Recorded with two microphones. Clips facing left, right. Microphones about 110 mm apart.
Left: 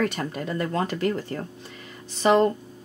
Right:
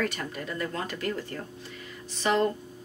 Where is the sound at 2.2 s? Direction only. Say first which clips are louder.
Left 6 dB; 45° left (ahead or behind).